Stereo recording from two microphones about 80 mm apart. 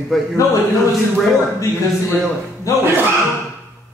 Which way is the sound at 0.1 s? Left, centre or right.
Centre.